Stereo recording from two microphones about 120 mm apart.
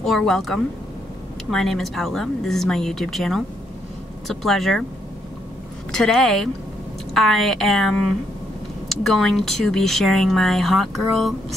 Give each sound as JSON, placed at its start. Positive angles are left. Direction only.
{"t": 0.0, "sound": "speech", "side_deg": 5}
{"t": 5.9, "sound": "speech", "side_deg": 5}